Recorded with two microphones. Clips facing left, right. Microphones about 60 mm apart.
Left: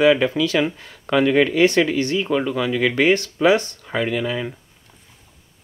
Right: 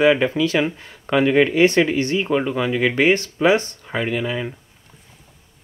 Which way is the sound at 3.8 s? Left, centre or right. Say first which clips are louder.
Left 1 dB; centre.